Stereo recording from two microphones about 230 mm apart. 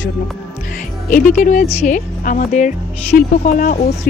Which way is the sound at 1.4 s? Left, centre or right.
Left.